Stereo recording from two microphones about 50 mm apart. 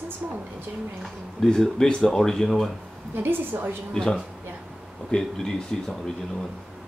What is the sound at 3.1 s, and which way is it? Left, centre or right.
Speech, right.